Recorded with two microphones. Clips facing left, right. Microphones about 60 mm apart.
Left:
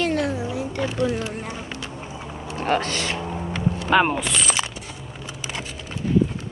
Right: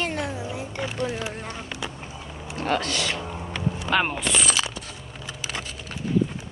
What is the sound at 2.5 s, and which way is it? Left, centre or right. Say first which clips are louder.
Speech: left 2 dB; left.